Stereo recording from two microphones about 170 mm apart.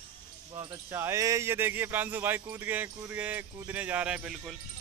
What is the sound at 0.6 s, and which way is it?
Speech, 25° right (ahead or behind).